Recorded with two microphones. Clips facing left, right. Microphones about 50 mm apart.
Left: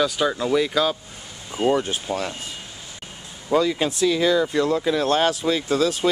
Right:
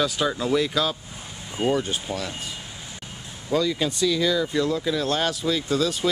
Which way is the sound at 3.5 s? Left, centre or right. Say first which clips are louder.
Left 3 dB; centre.